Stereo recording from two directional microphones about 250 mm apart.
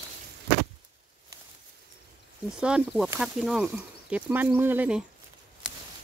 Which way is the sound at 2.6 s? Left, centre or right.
Centre.